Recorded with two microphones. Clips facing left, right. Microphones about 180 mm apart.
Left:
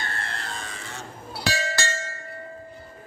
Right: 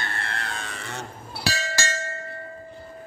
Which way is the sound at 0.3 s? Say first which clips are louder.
Right 2 dB; 65° right (ahead or behind).